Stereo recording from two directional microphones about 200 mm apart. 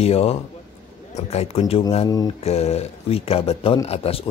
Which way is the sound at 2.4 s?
30° left (ahead or behind).